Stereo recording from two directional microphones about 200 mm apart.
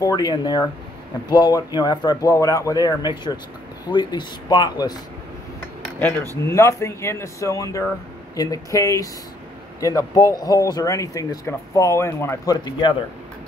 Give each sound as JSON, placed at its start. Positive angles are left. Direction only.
{"t": 0.0, "sound": "speech", "side_deg": 20}
{"t": 5.9, "sound": "speech", "side_deg": 10}